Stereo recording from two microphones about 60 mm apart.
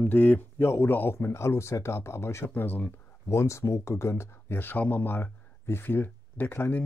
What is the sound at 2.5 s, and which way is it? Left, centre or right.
Speech, left.